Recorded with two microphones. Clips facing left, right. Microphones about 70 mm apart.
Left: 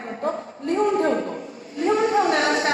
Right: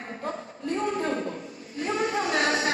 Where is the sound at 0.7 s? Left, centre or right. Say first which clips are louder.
Left 7 dB; left.